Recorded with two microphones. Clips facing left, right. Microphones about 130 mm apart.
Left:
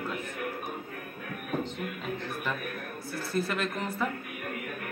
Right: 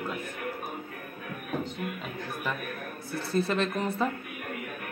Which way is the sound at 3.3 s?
25° right (ahead or behind).